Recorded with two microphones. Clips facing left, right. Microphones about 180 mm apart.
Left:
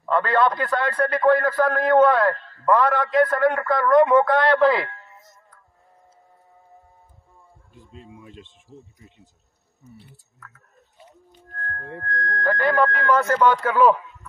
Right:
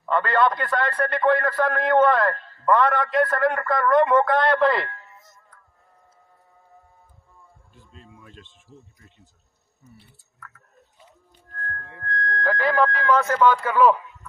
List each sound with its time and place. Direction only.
0.0 s a man's voice: centre (ahead or behind)
7.9 s speech: 15° left (ahead or behind)
12.0 s speech: centre (ahead or behind)